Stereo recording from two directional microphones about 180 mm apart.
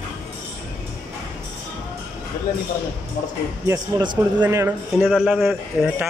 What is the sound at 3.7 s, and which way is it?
Speech, 20° right (ahead or behind).